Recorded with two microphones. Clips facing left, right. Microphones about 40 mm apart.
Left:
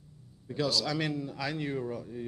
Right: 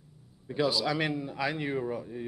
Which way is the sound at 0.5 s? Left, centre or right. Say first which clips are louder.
Right 2 dB; centre.